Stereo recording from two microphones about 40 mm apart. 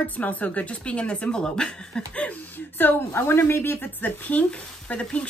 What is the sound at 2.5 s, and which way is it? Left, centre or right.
A woman's voice, left.